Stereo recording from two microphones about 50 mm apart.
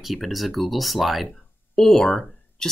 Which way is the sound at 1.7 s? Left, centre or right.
Centre.